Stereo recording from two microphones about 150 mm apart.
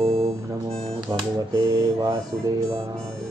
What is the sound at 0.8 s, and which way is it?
Speech, 30° right (ahead or behind).